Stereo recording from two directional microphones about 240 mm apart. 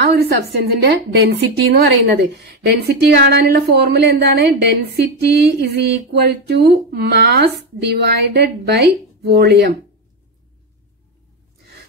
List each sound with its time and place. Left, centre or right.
0.0 s a woman's voice: right